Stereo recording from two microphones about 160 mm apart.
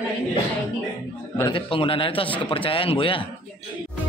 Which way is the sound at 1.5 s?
35° left (ahead or behind).